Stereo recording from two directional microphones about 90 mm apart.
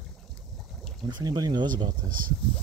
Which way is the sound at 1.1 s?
50° right (ahead or behind).